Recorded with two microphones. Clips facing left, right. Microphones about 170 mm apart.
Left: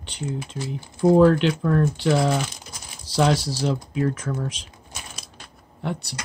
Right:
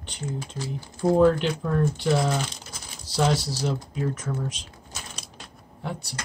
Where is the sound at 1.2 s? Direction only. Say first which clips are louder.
Left 3 dB; 75° left (ahead or behind).